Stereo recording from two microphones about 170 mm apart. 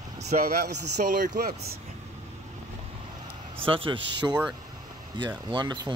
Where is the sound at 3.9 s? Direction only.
90° right.